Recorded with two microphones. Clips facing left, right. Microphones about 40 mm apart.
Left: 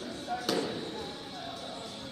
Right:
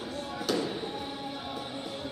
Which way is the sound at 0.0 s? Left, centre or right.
Centre.